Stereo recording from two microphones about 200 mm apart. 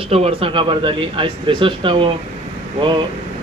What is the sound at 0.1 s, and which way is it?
Speech, 30° right (ahead or behind).